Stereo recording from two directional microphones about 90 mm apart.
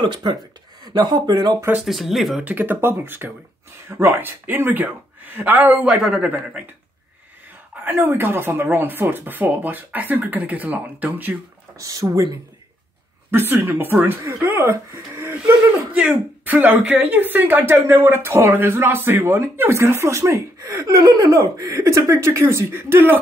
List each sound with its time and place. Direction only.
0.0 s speech: 60° right (ahead or behind)
1.9 s speech: centre (ahead or behind)
2.4 s speech: 20° right (ahead or behind)
5.9 s a man's voice: 5° right (ahead or behind)
7.8 s speech: 20° right (ahead or behind)
11.7 s speech: 40° right (ahead or behind)
13.3 s speech: 25° right (ahead or behind)
15.9 s speech: 15° right (ahead or behind); by 20.9 s 30° right (ahead or behind)
21.0 s speech: 45° right (ahead or behind); by 23.1 s 25° right (ahead or behind)